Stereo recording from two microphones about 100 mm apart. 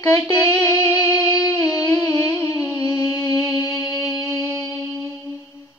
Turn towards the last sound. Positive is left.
turn(degrees=35)  # may be behind; listen again after turning